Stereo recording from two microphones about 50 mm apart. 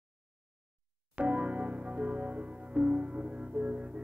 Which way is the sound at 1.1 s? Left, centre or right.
Right.